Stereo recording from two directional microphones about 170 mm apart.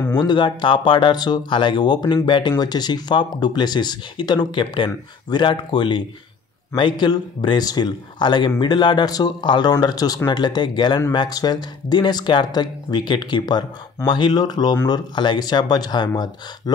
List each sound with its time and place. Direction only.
0.2 s speech: 25° left (ahead or behind)